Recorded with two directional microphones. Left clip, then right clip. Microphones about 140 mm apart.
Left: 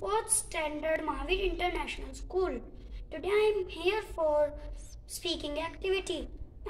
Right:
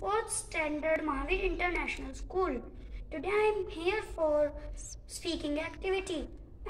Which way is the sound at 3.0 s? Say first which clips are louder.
Left 2 dB; 40° left (ahead or behind).